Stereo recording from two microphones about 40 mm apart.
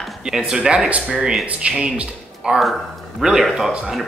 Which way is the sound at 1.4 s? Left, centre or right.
Right.